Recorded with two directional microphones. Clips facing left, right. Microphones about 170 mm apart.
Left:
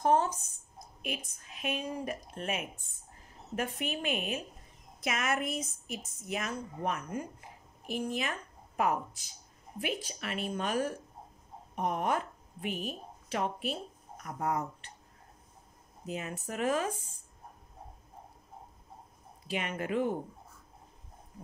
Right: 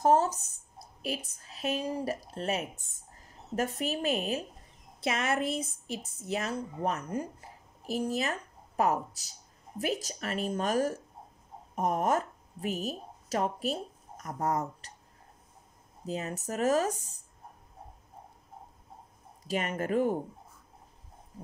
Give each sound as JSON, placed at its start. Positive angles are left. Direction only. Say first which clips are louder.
{"t": 0.0, "sound": "a woman's voice", "louder": "right 3 dB", "side_deg": -40}
{"t": 16.1, "sound": "a woman's voice", "louder": "right 3 dB", "side_deg": -35}
{"t": 19.4, "sound": "speech", "louder": "right 3 dB", "side_deg": -45}